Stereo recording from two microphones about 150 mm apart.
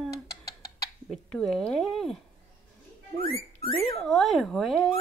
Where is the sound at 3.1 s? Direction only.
90° right.